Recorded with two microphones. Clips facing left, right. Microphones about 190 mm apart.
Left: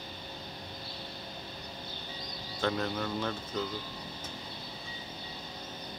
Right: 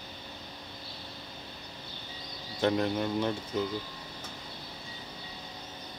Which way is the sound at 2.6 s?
20° right (ahead or behind).